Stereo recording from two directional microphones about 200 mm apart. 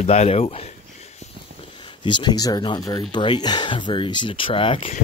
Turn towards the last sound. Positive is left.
turn(degrees=25)  # may be behind; listen again after turning